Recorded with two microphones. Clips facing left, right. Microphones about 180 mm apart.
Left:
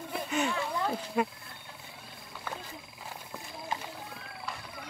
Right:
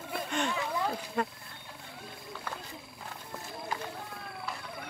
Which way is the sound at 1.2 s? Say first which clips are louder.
Left 3 dB; 10° left (ahead or behind).